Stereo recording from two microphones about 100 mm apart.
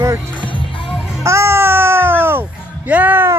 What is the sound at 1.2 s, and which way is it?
Music, 30° right (ahead or behind).